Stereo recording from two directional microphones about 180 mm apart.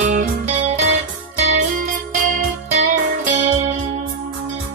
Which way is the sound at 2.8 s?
45° right (ahead or behind).